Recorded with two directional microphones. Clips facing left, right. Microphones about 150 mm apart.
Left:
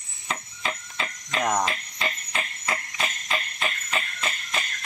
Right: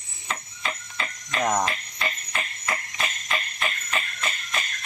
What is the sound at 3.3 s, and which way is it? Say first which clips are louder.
Insect: even; 20° left (ahead or behind).